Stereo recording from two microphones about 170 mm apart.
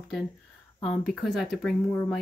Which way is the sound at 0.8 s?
Centre (ahead or behind).